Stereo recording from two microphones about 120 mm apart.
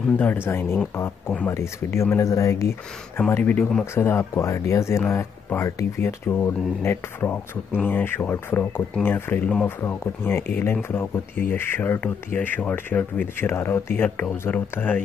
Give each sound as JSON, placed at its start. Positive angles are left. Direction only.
{"t": 0.2, "sound": "speech", "side_deg": 15}